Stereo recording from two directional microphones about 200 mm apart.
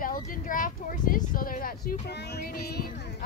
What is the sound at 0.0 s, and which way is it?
Speech, 45° left (ahead or behind).